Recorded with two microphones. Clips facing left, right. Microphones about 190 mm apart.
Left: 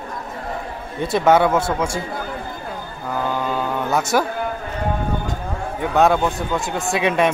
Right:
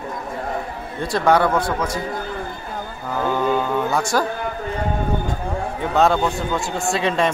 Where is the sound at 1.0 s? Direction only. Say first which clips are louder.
Left 2 dB; 20° left (ahead or behind).